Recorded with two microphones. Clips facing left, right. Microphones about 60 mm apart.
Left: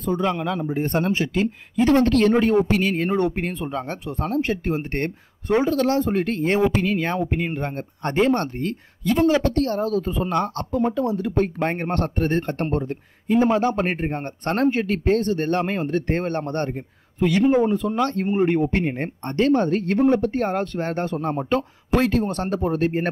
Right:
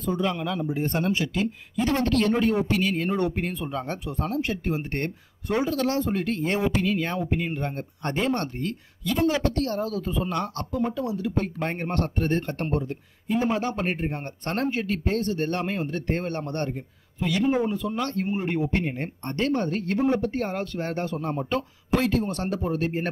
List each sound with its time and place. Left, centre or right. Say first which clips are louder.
0.0 s speech: left 4 dB; left